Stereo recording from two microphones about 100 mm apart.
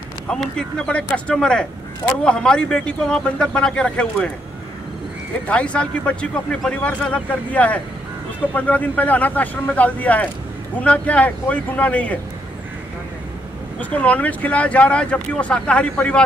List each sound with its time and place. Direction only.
0.3 s speech: 10° left (ahead or behind)
5.5 s speech: 10° left (ahead or behind)
13.7 s speech: 15° left (ahead or behind)